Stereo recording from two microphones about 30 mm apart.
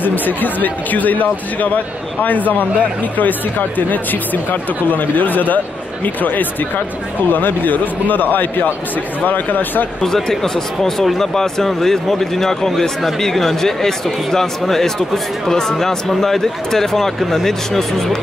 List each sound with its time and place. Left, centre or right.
0.0 s speech: left
6.0 s speech: left
7.2 s speech: left
9.2 s speech: left
10.4 s speech: centre